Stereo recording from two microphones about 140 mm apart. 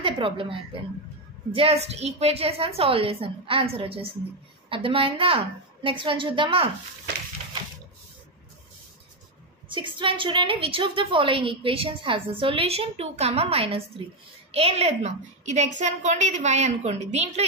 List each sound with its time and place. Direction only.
0.0 s a woman's voice: 40° right (ahead or behind)
9.7 s a woman's voice: 35° right (ahead or behind)